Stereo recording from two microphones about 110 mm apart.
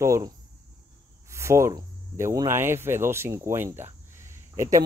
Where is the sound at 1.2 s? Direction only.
25° right (ahead or behind).